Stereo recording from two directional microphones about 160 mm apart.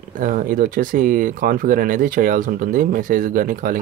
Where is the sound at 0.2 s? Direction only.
55° right (ahead or behind).